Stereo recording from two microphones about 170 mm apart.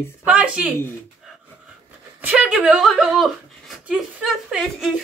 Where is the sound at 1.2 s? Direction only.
Centre (ahead or behind).